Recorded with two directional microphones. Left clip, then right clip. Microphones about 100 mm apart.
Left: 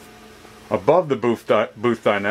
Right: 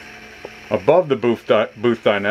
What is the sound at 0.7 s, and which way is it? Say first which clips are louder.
Speech: right 2 dB; centre (ahead or behind).